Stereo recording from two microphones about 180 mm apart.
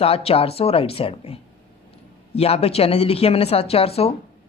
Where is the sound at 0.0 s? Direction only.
35° left (ahead or behind).